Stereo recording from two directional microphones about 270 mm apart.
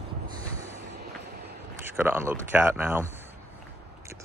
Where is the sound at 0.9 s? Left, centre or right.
Right.